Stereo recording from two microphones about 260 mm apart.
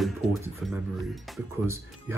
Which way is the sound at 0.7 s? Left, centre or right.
Centre.